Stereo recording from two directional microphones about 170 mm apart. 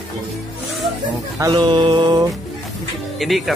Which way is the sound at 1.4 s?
25° right (ahead or behind).